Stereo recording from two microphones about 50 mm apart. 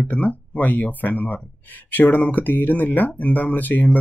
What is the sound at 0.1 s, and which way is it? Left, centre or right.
Speech, left.